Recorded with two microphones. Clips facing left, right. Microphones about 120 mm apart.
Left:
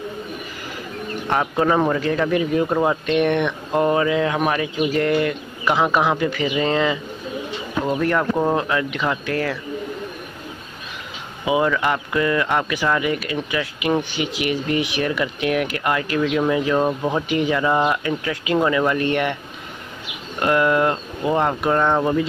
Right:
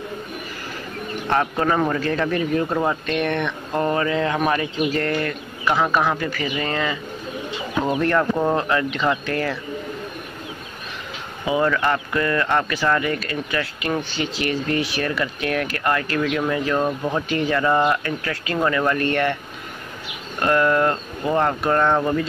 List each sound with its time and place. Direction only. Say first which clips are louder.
1.2 s speech: left 1 dB; 10° left (ahead or behind)
8.0 s speech: even; 10° left (ahead or behind)
11.4 s speech: left 1 dB; 15° left (ahead or behind)
20.3 s speech: left 1 dB; 15° left (ahead or behind)